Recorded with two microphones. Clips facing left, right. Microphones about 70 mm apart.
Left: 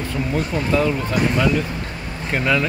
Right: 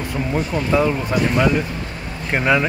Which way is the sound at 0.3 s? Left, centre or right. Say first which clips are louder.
Right 1 dB; centre.